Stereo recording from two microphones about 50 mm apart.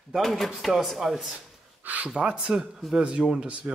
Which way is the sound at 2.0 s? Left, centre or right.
Centre.